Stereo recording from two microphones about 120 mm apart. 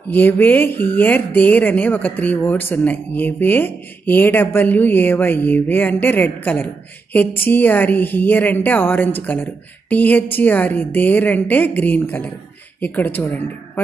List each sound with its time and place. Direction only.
0.1 s speech: 15° left (ahead or behind)